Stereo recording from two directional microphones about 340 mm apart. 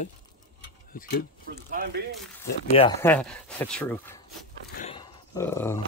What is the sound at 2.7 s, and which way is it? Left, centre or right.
Speech, centre.